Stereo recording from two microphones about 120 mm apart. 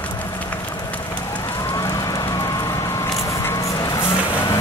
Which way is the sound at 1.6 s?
30° left (ahead or behind).